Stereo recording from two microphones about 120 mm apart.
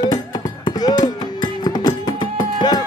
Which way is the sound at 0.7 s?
35° left (ahead or behind).